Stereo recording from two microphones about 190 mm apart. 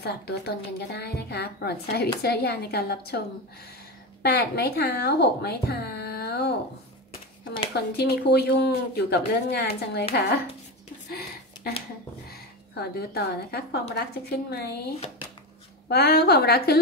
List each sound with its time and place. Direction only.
0.0 s speech: 60° left (ahead or behind)
4.2 s a woman's voice: 60° left (ahead or behind)
7.7 s speech: 60° left (ahead or behind)
11.1 s a sound: 55° left (ahead or behind)
12.3 s speech: 55° left (ahead or behind)
15.9 s speech: 55° left (ahead or behind)